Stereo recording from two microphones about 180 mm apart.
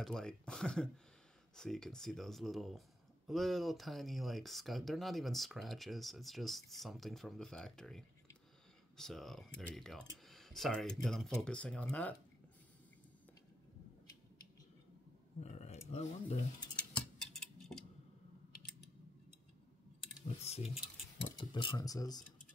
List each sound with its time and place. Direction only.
0.0 s speech: 5° left (ahead or behind)
15.4 s a sound: 35° left (ahead or behind)
15.9 s speech: 35° left (ahead or behind)
16.7 s tick-tock: 5° left (ahead or behind)
20.2 s speech: 35° left (ahead or behind)
21.2 s speech: 25° left (ahead or behind)